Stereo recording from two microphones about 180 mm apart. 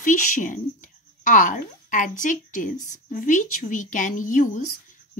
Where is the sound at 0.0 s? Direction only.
45° left (ahead or behind).